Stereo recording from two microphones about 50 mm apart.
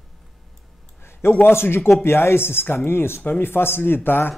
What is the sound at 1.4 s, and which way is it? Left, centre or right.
Speech, left.